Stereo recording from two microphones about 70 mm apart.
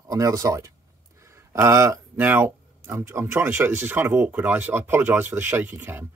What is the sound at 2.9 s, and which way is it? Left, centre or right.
Speech, right.